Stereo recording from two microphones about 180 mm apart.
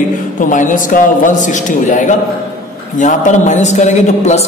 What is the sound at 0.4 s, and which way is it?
A woman's voice, 45° left (ahead or behind).